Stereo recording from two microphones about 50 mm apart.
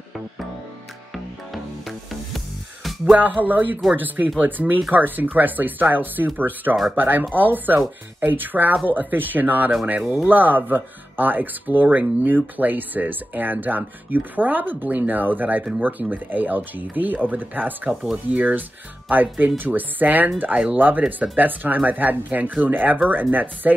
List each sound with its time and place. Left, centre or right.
1.1 s music: centre
3.2 s speech: right